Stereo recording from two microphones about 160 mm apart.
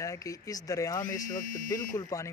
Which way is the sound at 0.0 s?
20° left (ahead or behind).